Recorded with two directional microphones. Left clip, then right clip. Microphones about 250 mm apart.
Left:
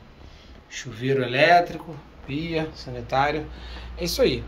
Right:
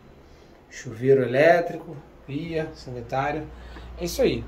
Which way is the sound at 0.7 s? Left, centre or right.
Centre.